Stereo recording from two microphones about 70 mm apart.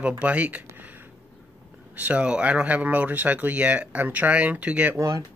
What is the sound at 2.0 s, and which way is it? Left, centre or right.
Speech, centre.